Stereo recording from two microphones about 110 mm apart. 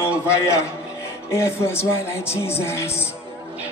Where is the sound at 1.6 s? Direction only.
25° left (ahead or behind).